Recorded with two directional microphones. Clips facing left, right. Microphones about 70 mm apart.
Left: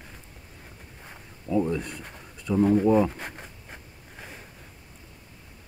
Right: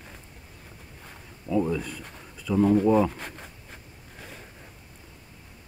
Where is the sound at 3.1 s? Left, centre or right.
Left.